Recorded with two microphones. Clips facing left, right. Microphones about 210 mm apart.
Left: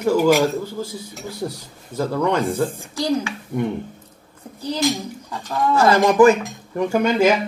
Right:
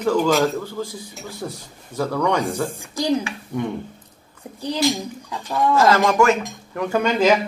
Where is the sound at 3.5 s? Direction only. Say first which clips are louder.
Left 2 dB; 30° left (ahead or behind).